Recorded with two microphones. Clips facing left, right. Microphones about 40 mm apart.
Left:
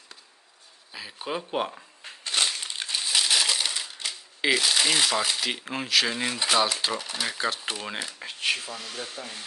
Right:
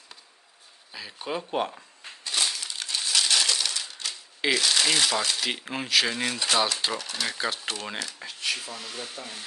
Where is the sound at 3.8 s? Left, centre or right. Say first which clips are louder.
Left 1 dB; centre.